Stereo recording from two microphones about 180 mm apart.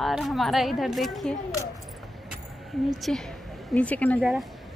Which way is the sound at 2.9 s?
Centre (ahead or behind).